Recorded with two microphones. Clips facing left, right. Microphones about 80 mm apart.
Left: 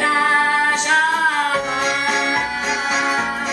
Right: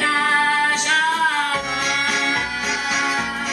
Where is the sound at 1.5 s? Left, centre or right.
Left.